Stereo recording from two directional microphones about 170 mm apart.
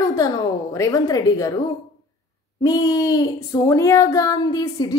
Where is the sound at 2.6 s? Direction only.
20° left (ahead or behind).